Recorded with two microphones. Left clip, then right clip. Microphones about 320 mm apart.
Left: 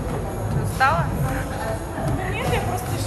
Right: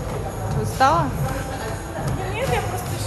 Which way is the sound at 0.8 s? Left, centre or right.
Centre.